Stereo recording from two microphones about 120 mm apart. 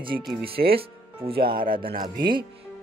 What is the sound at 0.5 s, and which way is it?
Speech, 50° right (ahead or behind).